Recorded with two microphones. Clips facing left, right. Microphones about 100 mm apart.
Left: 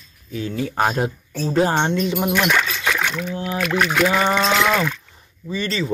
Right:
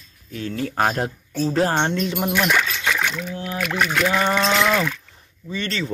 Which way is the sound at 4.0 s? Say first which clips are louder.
Left 1 dB; 5° left (ahead or behind).